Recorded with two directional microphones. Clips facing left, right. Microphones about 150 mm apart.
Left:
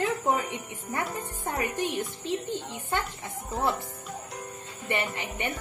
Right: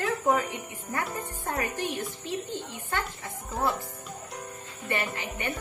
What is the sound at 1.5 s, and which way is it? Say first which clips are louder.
A woman's voice: left 1 dB; 20° left (ahead or behind).